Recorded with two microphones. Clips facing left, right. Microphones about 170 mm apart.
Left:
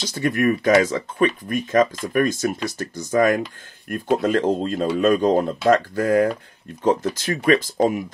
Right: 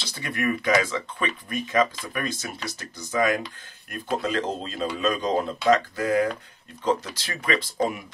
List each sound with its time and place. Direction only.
0.0 s speech: 45° left (ahead or behind)